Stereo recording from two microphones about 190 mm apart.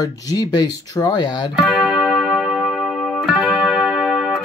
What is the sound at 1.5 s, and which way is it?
Music, centre (ahead or behind).